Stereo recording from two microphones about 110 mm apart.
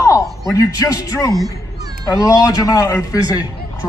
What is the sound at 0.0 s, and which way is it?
A man's voice, 30° left (ahead or behind).